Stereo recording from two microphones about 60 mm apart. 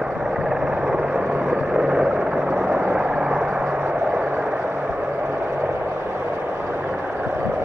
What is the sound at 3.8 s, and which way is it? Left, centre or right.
Vehicle, right.